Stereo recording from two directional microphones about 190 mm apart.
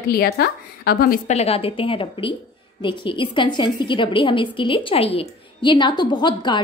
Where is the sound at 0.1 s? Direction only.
55° left (ahead or behind).